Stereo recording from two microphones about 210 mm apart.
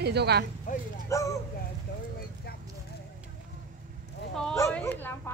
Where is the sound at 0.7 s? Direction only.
40° left (ahead or behind).